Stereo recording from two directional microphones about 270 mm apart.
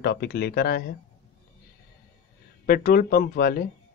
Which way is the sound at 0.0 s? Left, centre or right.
Left.